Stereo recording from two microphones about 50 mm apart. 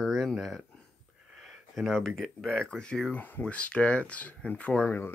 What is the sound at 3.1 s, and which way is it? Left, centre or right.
Speech, left.